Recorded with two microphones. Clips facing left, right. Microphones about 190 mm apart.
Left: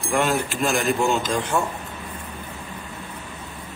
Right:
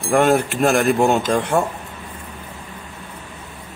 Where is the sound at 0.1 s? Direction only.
50° right (ahead or behind).